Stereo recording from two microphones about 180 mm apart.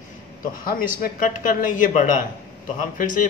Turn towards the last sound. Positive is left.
turn(degrees=50)  # may be behind; listen again after turning